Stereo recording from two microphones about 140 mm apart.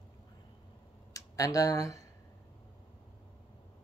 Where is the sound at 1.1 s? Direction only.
25° left (ahead or behind).